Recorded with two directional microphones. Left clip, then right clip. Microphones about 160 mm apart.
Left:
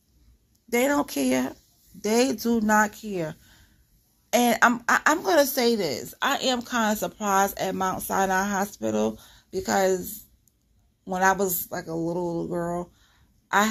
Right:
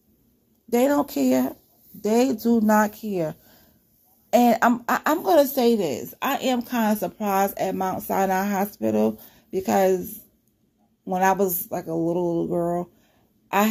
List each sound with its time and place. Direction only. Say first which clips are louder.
0.7 s speech: right 3 dB; 15° right (ahead or behind)